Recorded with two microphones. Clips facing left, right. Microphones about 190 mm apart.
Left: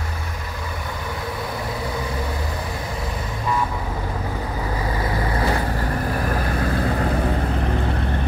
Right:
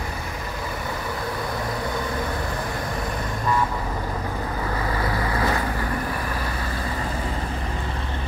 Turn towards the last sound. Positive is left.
turn(degrees=60)  # may be behind; listen again after turning